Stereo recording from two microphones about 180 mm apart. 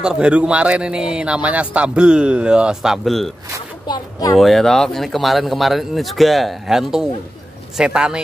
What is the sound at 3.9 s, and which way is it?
Speech, 25° left (ahead or behind).